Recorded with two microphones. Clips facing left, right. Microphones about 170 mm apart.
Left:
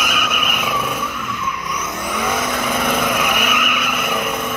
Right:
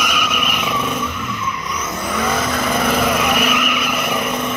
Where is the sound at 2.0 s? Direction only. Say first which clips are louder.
Right 2 dB; centre (ahead or behind).